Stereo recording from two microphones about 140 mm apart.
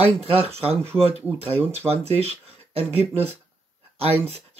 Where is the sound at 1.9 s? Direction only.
45° right (ahead or behind).